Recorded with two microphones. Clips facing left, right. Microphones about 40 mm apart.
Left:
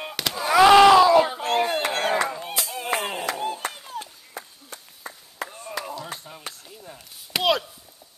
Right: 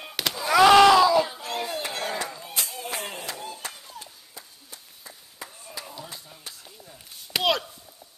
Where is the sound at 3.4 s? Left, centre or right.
Left.